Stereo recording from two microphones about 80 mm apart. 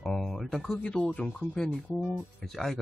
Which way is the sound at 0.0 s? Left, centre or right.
Centre.